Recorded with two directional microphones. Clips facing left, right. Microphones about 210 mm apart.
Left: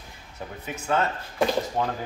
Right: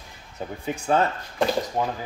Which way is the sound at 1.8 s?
10° right (ahead or behind).